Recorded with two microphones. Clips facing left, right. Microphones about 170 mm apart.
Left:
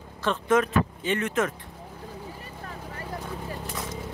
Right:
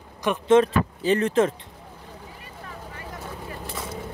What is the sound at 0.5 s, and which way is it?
Speech, 30° right (ahead or behind).